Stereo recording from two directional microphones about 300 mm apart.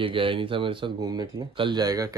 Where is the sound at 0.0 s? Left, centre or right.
Centre.